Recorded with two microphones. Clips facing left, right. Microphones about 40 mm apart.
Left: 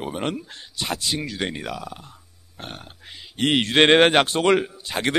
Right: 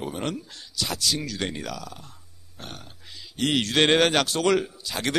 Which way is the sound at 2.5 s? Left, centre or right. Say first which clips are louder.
Left 3 dB; left.